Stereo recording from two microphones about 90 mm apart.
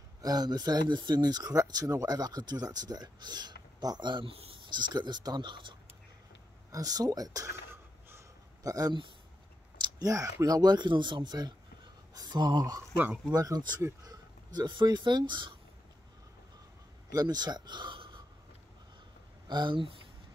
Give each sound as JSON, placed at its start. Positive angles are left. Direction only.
{"t": 0.2, "sound": "speech", "side_deg": -45}
{"t": 4.9, "sound": "speech", "side_deg": -55}
{"t": 6.7, "sound": "speech", "side_deg": -45}
{"t": 8.6, "sound": "speech", "side_deg": -40}
{"t": 14.0, "sound": "a sound", "side_deg": -45}
{"t": 14.7, "sound": "speech", "side_deg": -60}
{"t": 17.1, "sound": "speech", "side_deg": -45}
{"t": 19.4, "sound": "speech", "side_deg": -55}